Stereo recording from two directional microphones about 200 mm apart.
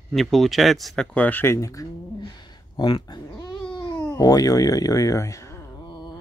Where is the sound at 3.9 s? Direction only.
15° left (ahead or behind).